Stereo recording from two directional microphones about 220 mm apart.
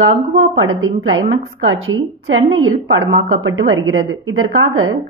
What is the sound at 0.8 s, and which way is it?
A woman's voice, 65° right (ahead or behind).